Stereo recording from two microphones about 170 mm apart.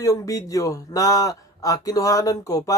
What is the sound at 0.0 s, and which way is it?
Speech, 20° left (ahead or behind).